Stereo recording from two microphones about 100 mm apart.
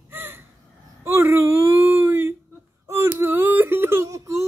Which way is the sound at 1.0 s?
25° right (ahead or behind).